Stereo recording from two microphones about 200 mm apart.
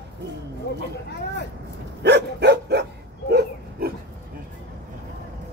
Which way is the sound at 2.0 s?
60° right (ahead or behind).